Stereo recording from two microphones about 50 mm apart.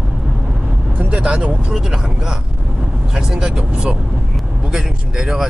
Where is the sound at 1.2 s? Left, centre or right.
Right.